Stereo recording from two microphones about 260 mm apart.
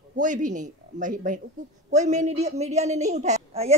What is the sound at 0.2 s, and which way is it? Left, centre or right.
A woman's voice, right.